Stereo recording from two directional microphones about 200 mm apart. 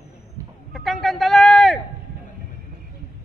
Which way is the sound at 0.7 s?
Centre (ahead or behind).